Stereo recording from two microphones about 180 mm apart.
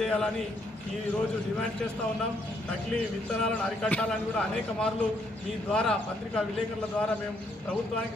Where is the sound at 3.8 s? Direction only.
5° left (ahead or behind).